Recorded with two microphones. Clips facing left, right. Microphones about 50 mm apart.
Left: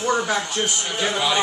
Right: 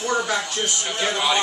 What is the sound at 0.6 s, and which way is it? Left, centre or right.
Speech, left.